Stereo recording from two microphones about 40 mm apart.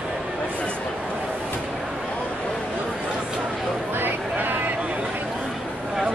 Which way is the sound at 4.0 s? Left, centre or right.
Right.